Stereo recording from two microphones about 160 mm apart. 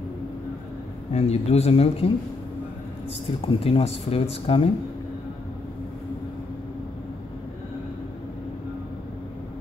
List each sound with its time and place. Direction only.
1.1 s speech: 40° left (ahead or behind)
3.4 s speech: 35° left (ahead or behind)